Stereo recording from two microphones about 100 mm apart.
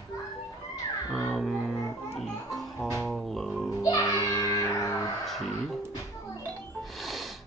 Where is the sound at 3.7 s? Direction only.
35° left (ahead or behind).